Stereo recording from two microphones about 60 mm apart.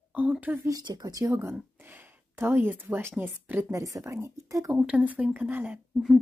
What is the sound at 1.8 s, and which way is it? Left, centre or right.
Speech, right.